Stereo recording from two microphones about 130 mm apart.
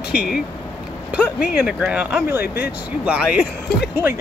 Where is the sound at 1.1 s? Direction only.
10° right (ahead or behind).